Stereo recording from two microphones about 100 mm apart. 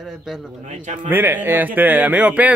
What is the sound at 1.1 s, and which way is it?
A man's voice, 20° right (ahead or behind).